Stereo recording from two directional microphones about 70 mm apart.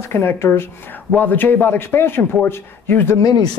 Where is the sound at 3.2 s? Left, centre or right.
Left.